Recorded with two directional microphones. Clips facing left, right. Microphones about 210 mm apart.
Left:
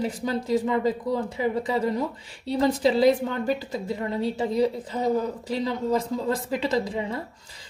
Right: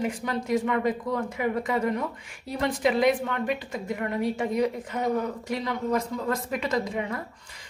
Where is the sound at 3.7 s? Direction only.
25° left (ahead or behind).